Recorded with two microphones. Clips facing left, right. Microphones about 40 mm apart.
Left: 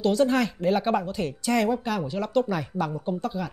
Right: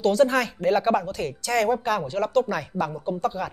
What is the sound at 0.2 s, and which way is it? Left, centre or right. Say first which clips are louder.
Speech: right 3 dB; centre.